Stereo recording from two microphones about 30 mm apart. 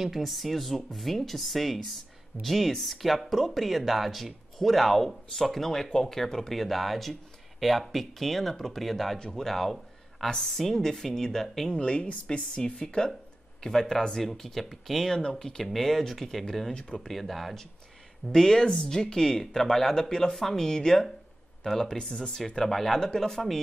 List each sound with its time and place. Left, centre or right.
0.2 s a woman's voice: centre
6.5 s a woman's voice: centre
11.7 s speech: left
13.6 s a woman's voice: centre
15.3 s a woman's voice: centre
18.3 s a woman's voice: centre
22.7 s speech: centre
22.9 s a woman's voice: centre